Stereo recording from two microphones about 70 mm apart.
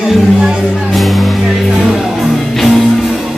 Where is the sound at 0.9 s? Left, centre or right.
Centre.